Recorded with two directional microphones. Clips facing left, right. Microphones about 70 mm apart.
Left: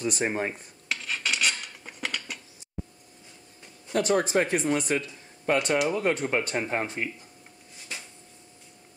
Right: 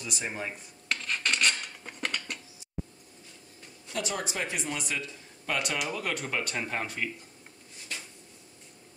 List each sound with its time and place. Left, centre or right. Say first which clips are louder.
0.0 s speech: left 8 dB; left
0.8 s filing: even; centre
3.9 s speech: left 10 dB; left